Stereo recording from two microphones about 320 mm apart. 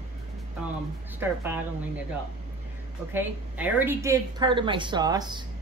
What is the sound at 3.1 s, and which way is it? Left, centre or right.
A woman's voice, centre.